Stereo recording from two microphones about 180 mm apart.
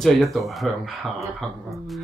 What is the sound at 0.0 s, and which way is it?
Speech, centre (ahead or behind).